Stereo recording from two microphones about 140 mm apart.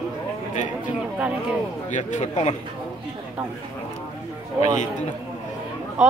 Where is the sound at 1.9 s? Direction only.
60° left (ahead or behind).